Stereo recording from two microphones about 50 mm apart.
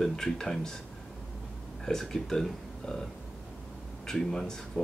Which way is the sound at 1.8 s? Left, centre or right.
Centre.